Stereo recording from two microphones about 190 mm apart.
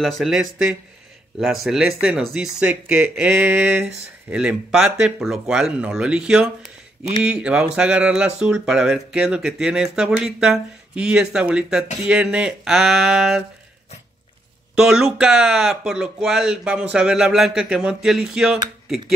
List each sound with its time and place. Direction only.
0.2 s speech: 5° right (ahead or behind)
14.8 s speech: 5° right (ahead or behind)